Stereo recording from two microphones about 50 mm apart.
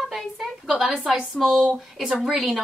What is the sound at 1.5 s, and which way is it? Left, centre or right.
Speech, centre.